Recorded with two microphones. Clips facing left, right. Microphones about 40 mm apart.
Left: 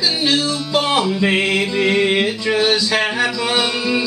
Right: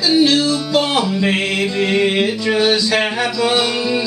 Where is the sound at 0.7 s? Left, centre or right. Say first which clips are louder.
Left 1 dB; centre.